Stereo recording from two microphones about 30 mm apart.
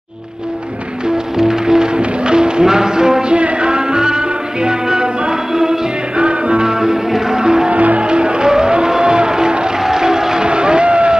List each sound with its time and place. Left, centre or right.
1.0 s music: right
2.0 s music: right
3.3 s music: right
5.5 s music: centre
6.1 s music: right
6.6 s music: centre
7.7 s music: right
8.0 s music: right
9.8 s music: centre
10.5 s vehicle: right